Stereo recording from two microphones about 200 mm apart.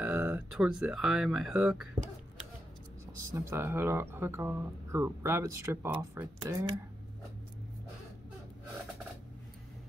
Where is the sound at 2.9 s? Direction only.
15° right (ahead or behind).